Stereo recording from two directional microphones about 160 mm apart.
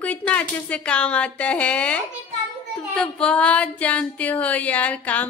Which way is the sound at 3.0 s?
5° left (ahead or behind).